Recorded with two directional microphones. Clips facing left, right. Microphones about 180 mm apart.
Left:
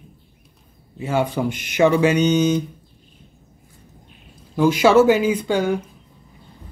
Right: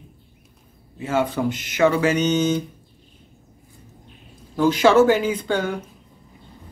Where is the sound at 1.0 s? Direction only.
15° left (ahead or behind).